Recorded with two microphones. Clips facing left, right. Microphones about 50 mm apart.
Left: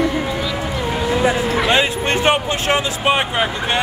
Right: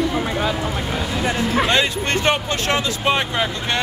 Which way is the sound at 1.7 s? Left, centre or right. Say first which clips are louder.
Left 2 dB; centre.